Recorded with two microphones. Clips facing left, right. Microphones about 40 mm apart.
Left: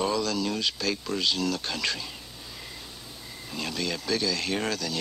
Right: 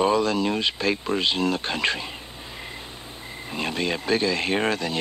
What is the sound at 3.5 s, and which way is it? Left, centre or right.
Speech, right.